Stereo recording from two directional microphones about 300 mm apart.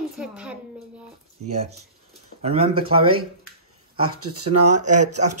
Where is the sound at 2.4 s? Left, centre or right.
Right.